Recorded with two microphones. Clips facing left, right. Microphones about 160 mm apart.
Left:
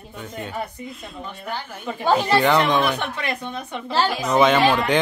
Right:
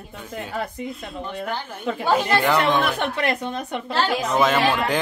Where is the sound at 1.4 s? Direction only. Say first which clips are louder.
Right 2 dB; 75° right (ahead or behind).